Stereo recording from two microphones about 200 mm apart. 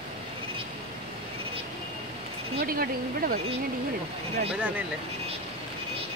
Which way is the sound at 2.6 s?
45° right (ahead or behind).